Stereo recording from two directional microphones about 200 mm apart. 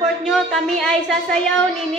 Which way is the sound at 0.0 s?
Centre (ahead or behind).